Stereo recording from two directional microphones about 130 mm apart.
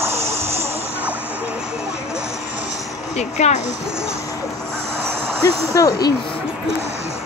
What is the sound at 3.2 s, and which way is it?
Speech, 60° left (ahead or behind).